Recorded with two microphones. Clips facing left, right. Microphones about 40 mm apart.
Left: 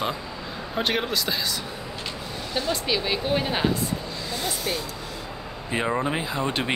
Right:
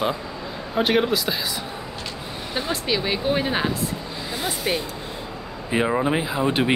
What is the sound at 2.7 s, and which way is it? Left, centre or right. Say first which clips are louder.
Speech: right 2 dB; centre.